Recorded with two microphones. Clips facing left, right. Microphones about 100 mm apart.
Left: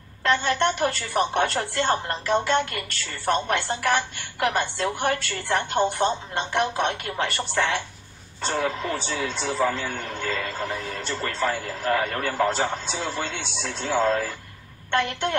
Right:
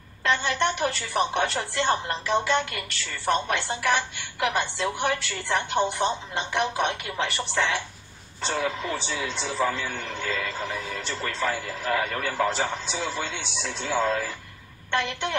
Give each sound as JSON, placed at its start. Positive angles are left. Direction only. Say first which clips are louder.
{"t": 0.2, "sound": "a man's voice", "louder": "left 2 dB", "side_deg": 50}